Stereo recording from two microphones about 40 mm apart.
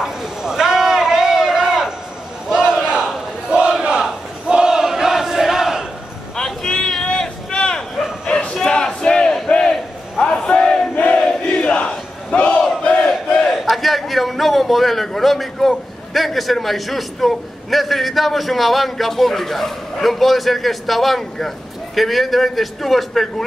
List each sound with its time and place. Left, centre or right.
0.0 s a sound: centre
2.4 s battle cry: centre
6.3 s a sound: centre
8.3 s crowd: left
8.5 s battle cry: centre
11.1 s crowd: left
12.4 s battle cry: left
13.5 s a man's voice: centre